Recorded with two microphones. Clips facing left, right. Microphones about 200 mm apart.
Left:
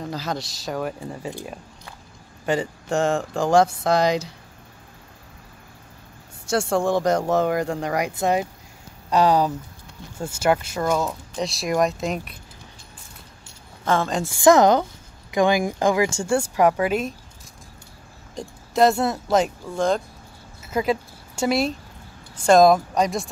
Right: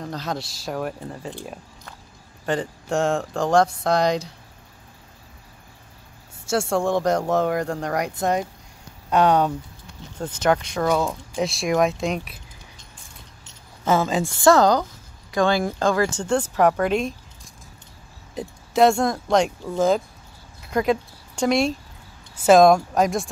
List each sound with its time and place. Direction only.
0.0 s speech: centre (ahead or behind)
1.0 s speech: 10° left (ahead or behind)
6.7 s speech: centre (ahead or behind)
13.8 s speech: 5° right (ahead or behind)
14.3 s speech: 15° left (ahead or behind)
18.3 s speech: centre (ahead or behind)